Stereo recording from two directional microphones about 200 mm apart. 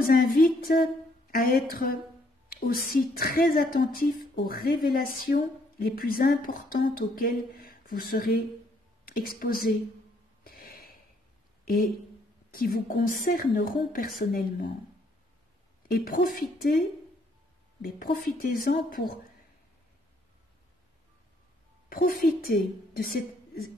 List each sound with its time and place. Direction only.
0.0 s a woman's voice: 45° left (ahead or behind)
10.4 s a sound: 50° left (ahead or behind)
11.6 s a woman's voice: 45° left (ahead or behind)
15.9 s a woman's voice: 45° left (ahead or behind)
17.9 s a woman's voice: 40° left (ahead or behind)
21.8 s a woman's voice: 45° left (ahead or behind)